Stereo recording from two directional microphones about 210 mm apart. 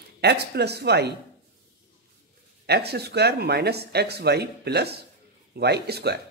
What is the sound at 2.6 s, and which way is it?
A woman's voice, 50° right (ahead or behind).